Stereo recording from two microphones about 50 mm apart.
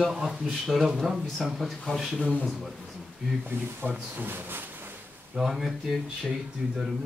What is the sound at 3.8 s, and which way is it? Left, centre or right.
Speech, right.